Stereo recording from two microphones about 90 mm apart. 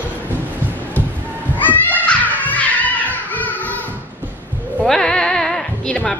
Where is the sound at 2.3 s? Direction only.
20° left (ahead or behind).